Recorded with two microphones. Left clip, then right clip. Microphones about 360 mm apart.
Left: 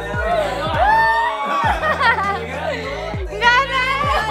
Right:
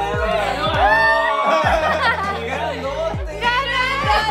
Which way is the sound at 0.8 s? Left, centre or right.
Centre.